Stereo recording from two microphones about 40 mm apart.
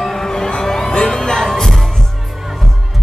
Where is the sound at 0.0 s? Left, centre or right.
Centre.